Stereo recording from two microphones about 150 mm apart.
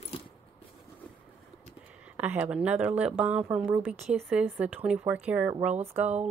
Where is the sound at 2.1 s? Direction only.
10° right (ahead or behind).